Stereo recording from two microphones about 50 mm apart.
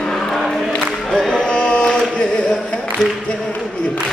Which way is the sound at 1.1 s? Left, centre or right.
Centre.